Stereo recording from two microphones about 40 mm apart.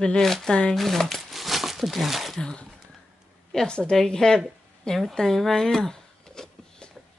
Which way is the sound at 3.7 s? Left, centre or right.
Left.